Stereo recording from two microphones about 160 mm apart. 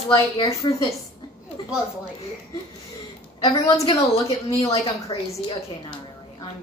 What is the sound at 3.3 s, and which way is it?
Speech, 25° left (ahead or behind).